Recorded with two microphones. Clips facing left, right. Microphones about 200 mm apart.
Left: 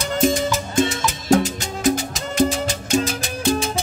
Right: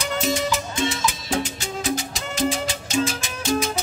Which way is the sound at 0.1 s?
45° left (ahead or behind).